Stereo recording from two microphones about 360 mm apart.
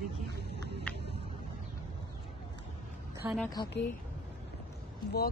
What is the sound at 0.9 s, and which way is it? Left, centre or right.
Music, centre.